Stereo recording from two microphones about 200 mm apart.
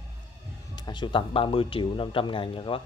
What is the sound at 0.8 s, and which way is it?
Speech, 20° left (ahead or behind).